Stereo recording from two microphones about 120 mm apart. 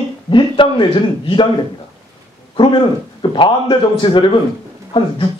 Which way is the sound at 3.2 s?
45° left (ahead or behind).